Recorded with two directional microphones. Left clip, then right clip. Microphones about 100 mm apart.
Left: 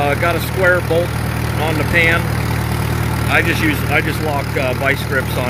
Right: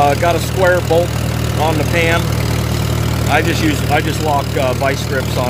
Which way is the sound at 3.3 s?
Centre (ahead or behind).